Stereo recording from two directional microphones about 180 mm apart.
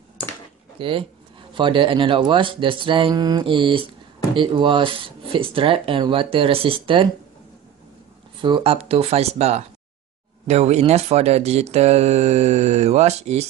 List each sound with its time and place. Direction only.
0.7 s speech: 30° right (ahead or behind)
8.4 s speech: 25° right (ahead or behind)